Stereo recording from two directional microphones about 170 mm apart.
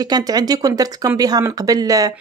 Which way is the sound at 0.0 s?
20° right (ahead or behind).